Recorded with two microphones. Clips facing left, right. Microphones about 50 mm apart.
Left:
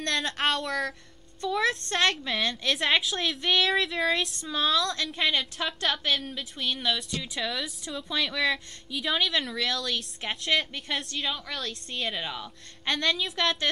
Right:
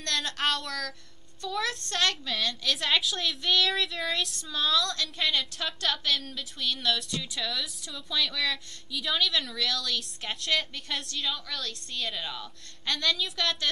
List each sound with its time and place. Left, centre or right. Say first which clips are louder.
0.0 s a woman's voice: left 2 dB; centre
2.6 s a woman's voice: left 2 dB; centre
12.9 s a woman's voice: left 2 dB; centre